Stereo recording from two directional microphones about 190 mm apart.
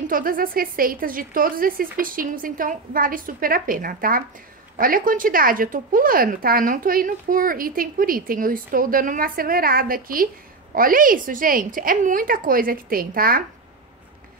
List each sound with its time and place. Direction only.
0.1 s speech: 50° right (ahead or behind)